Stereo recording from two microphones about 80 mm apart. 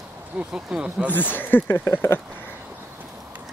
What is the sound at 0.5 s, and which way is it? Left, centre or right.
Speech, centre.